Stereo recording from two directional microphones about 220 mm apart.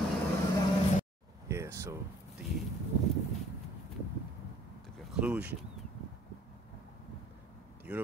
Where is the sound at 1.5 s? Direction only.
10° right (ahead or behind).